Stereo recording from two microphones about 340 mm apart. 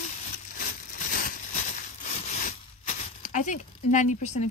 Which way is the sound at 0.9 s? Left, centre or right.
Left.